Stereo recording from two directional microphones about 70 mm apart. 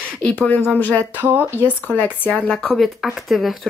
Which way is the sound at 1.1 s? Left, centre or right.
Right.